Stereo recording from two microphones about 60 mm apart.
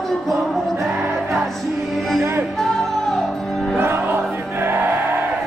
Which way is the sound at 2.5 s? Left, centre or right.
Centre.